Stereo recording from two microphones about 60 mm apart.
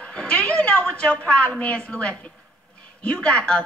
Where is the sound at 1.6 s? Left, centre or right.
Left.